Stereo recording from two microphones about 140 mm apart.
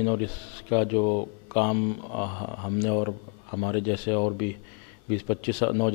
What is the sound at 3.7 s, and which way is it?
Speech, 20° left (ahead or behind).